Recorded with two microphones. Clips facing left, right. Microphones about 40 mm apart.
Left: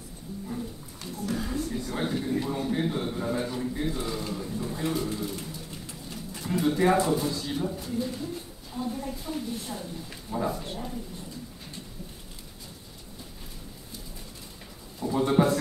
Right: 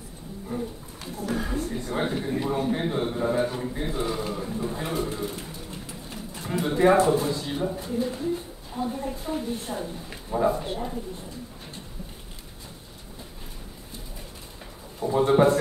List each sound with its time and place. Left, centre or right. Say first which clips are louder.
0.6 s a sound: right 4 dB; right
3.7 s pigeon: right 2 dB; right
6.0 s bird: left 2 dB; right
6.9 s speech: right 4 dB; right
10.6 s speech: right 5 dB; right
15.0 s a man's voice: right 3 dB; right